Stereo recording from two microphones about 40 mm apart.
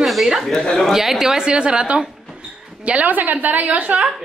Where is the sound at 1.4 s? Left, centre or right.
Right.